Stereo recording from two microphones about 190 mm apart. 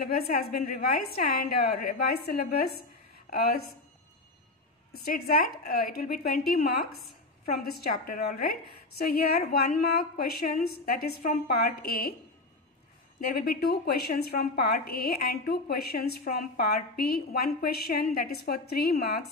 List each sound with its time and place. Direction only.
0.0 s a woman's voice: 50° left (ahead or behind)
5.0 s a woman's voice: 50° left (ahead or behind)
13.3 s a woman's voice: 50° left (ahead or behind)